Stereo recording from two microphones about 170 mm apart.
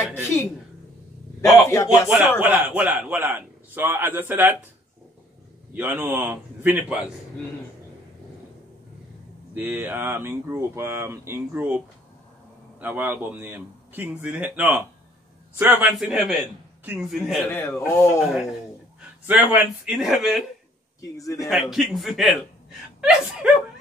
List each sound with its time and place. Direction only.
0.0 s a man's voice: 15° left (ahead or behind)
2.0 s a man's voice: 5° right (ahead or behind)
5.8 s speech: 10° right (ahead or behind)
9.5 s speech: 10° right (ahead or behind)
12.8 s speech: 10° right (ahead or behind)
16.0 s a man's voice: centre (ahead or behind)
17.5 s a man's voice: 10° left (ahead or behind)
19.2 s a man's voice: 10° right (ahead or behind)
21.0 s a man's voice: 20° left (ahead or behind)
21.4 s a man's voice: centre (ahead or behind)
23.4 s speech: 5° right (ahead or behind)